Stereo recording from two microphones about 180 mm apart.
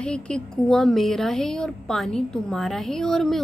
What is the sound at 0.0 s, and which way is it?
A woman's voice, 5° left (ahead or behind).